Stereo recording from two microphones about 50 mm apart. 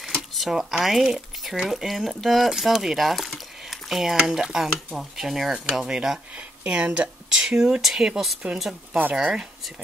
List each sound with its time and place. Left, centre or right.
0.3 s speech: centre
3.9 s stir: centre
5.9 s stir: centre
6.6 s speech: right
8.5 s a woman's voice: right
9.1 s stir: centre